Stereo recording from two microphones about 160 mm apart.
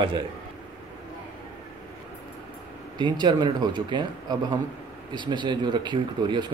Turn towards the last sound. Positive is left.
turn(degrees=-30)  # may be behind; listen again after turning